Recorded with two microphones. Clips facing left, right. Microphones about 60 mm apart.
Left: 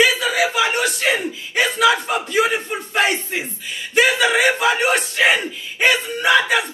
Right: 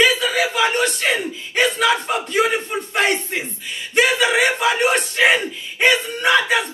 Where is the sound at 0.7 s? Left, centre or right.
Centre.